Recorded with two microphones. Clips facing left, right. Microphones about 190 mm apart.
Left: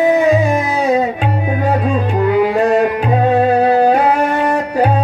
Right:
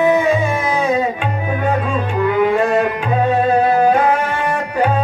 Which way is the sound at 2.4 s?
35° left (ahead or behind).